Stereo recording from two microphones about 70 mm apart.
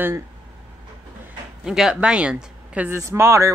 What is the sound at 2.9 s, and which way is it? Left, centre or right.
Speech, right.